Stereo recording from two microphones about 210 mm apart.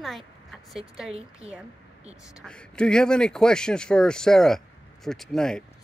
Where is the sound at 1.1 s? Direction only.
30° right (ahead or behind).